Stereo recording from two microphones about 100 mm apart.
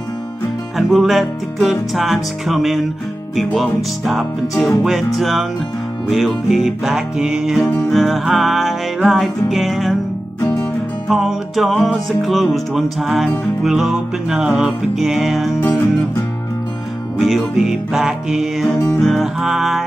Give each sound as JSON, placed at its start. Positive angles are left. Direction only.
{"t": 0.7, "sound": "music", "side_deg": 0}
{"t": 10.4, "sound": "music", "side_deg": 25}
{"t": 11.1, "sound": "music", "side_deg": -5}
{"t": 15.7, "sound": "music", "side_deg": 30}
{"t": 17.2, "sound": "music", "side_deg": 0}